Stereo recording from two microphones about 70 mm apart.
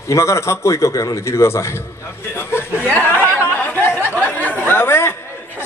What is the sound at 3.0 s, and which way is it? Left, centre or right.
Chatter, right.